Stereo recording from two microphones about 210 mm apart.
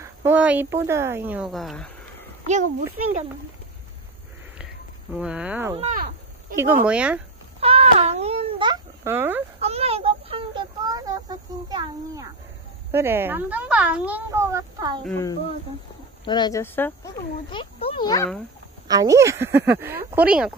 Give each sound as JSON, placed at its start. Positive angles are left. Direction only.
{"t": 0.0, "sound": "speech", "side_deg": -10}
{"t": 2.4, "sound": "a child's voice", "side_deg": -35}
{"t": 5.1, "sound": "speech", "side_deg": -5}
{"t": 5.8, "sound": "speech", "side_deg": -35}
{"t": 6.5, "sound": "speech", "side_deg": -10}
{"t": 7.6, "sound": "baby cry", "side_deg": -30}
{"t": 9.0, "sound": "speech", "side_deg": -10}
{"t": 9.6, "sound": "child singing", "side_deg": -30}
{"t": 12.9, "sound": "speech", "side_deg": -10}
{"t": 16.3, "sound": "speech", "side_deg": 20}
{"t": 17.5, "sound": "speech", "side_deg": 25}
{"t": 18.9, "sound": "speech", "side_deg": -15}